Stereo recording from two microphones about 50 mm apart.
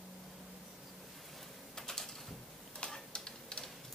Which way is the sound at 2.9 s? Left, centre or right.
Centre.